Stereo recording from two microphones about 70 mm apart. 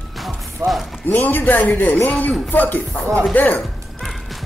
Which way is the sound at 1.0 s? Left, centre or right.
Left.